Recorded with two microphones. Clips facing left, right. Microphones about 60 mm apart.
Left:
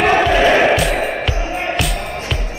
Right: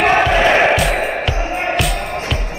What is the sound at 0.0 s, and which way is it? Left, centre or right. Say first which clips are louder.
Music: even; centre.